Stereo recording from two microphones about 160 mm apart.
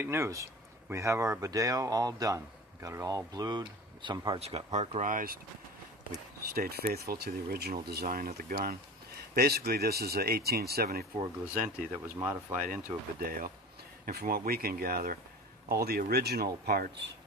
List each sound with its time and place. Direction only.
0.0 s speech: 15° right (ahead or behind)
4.4 s speech: 40° right (ahead or behind); by 5.4 s 60° right (ahead or behind)
6.5 s speech: 70° right (ahead or behind)
9.3 s speech: 75° right (ahead or behind)
12.2 s speech: 15° right (ahead or behind)
12.6 s speech: 60° right (ahead or behind); by 16.8 s 80° right